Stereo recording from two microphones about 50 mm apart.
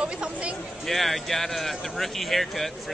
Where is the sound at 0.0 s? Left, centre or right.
Centre.